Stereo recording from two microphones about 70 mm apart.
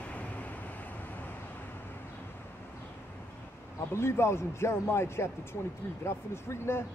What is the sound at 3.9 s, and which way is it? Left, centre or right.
A man's voice, left.